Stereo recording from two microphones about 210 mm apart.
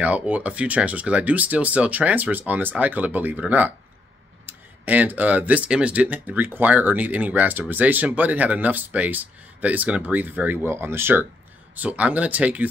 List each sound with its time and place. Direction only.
0.0 s speech: 5° right (ahead or behind)